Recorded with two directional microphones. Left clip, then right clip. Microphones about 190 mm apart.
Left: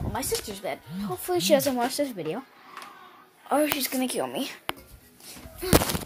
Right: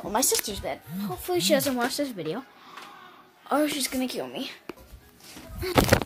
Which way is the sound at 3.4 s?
Centre (ahead or behind).